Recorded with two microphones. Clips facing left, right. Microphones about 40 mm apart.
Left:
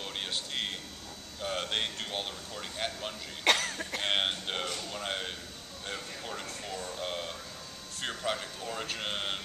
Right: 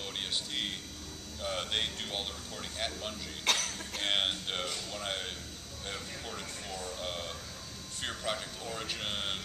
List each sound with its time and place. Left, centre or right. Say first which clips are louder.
0.0 s a sound: left 1 dB; centre
1.4 s speech: left 1 dB; centre
3.4 s cough: left 5 dB; left
4.0 s speech: left 1 dB; centre
5.9 s a sound: left 2 dB; centre
8.0 s speech: left 2 dB; centre